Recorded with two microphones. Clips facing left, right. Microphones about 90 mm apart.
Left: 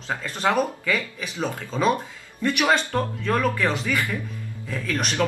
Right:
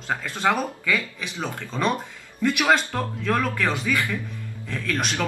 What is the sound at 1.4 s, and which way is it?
Speech, 5° left (ahead or behind).